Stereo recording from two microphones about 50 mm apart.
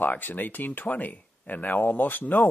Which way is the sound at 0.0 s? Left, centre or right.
Left.